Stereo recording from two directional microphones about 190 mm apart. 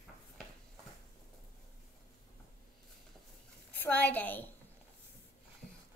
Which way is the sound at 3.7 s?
10° left (ahead or behind).